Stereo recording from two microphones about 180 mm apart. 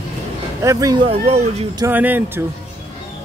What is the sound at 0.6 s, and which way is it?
Speech, 20° right (ahead or behind).